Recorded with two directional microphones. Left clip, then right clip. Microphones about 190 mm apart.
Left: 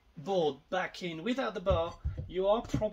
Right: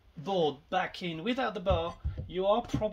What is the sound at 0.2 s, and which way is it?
Speech, 35° right (ahead or behind).